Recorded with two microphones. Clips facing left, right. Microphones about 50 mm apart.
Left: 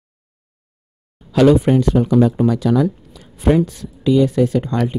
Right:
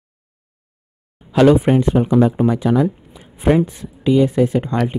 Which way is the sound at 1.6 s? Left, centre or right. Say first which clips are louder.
Even; right.